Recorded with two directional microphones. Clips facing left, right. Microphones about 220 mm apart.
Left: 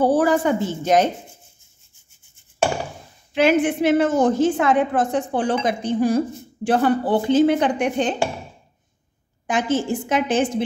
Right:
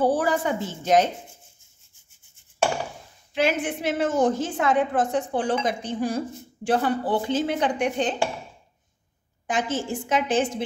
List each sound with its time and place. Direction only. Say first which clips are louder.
0.2 s a woman's voice: left 6 dB; 55° left (ahead or behind)
3.3 s a woman's voice: left 7 dB; 70° left (ahead or behind)
9.5 s a woman's voice: left 5 dB; 65° left (ahead or behind)